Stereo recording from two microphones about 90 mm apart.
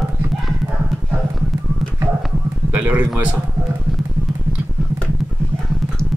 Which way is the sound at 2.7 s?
15° right (ahead or behind).